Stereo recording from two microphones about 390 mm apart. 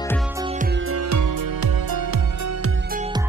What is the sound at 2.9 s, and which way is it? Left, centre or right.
Music, centre.